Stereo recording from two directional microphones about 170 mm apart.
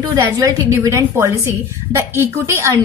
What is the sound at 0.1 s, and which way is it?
A woman's voice, 20° right (ahead or behind).